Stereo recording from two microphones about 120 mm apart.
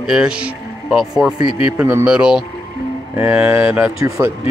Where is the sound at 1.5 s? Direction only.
50° left (ahead or behind).